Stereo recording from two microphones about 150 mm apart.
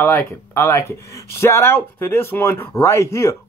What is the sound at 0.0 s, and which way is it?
Speech, 10° left (ahead or behind).